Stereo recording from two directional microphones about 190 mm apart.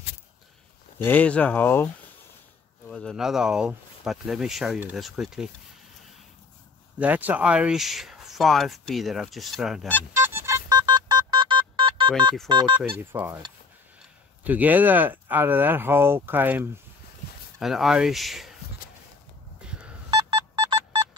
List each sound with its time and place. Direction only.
0.9 s speech: 10° left (ahead or behind)
2.9 s speech: 5° left (ahead or behind)
7.0 s speech: 10° right (ahead or behind)
10.1 s music: 15° right (ahead or behind)
12.4 s speech: 25° right (ahead or behind)
13.1 s speech: 10° right (ahead or behind)
14.4 s speech: 10° right (ahead or behind)
19.6 s telephone dialing: 5° right (ahead or behind)
20.1 s telephone dialing: 25° right (ahead or behind)